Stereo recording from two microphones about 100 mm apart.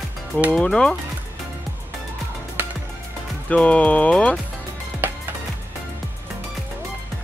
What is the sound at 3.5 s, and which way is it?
Speech, 15° left (ahead or behind).